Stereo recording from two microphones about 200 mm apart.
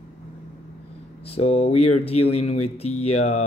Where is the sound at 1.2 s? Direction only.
30° left (ahead or behind).